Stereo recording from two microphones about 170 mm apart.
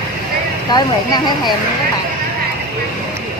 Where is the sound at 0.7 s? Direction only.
25° left (ahead or behind).